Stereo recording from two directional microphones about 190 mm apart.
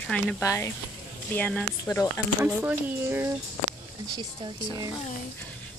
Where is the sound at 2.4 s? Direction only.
10° right (ahead or behind).